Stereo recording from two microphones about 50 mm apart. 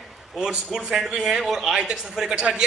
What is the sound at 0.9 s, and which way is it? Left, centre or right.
Speech, centre.